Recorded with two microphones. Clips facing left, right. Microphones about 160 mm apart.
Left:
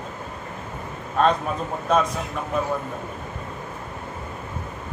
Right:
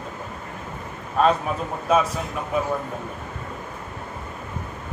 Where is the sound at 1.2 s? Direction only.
5° right (ahead or behind).